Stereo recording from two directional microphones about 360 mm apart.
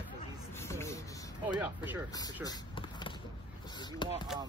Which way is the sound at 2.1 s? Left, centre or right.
Centre.